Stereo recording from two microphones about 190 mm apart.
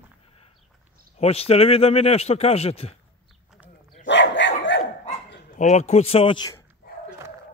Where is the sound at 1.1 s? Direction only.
30° left (ahead or behind).